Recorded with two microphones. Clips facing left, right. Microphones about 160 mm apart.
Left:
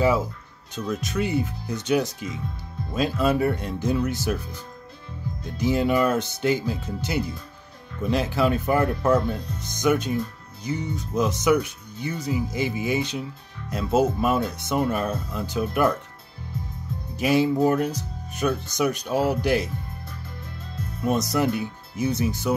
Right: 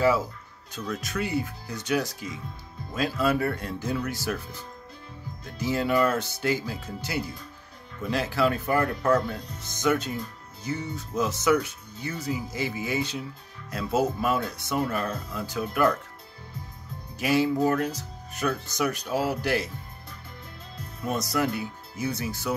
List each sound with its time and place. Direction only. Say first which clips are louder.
0.8 s speech: left 4 dB; 20° left (ahead or behind)
5.6 s speech: left 3 dB; 20° left (ahead or behind)
17.2 s speech: left 3 dB; 20° left (ahead or behind)
21.0 s speech: left 4 dB; 20° left (ahead or behind)